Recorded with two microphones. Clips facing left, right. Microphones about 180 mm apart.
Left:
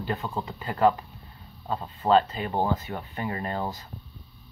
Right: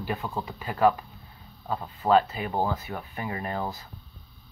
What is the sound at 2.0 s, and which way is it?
Speech, 10° right (ahead or behind).